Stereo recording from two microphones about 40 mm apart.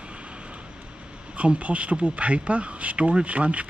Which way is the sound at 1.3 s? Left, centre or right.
Right.